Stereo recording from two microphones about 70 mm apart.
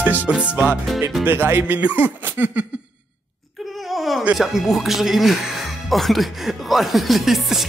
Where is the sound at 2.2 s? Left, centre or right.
Right.